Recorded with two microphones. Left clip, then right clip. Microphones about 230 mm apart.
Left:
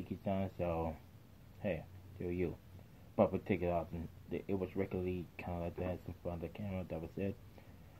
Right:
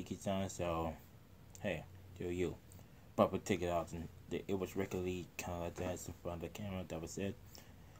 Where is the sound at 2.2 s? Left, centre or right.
Centre.